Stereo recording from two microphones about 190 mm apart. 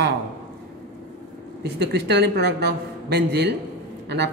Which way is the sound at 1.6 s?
60° right (ahead or behind).